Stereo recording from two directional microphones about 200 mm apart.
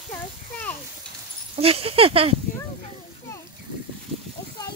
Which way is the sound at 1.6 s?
30° right (ahead or behind).